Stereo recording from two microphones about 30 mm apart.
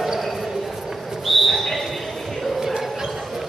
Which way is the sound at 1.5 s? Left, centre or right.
Centre.